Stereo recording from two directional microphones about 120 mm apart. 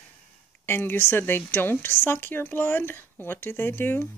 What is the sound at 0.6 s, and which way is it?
Speech, 20° left (ahead or behind).